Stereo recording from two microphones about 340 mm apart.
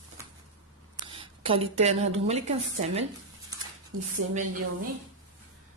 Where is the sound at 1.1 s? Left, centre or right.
Centre.